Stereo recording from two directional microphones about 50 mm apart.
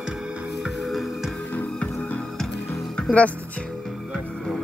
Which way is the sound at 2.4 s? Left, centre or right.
Centre.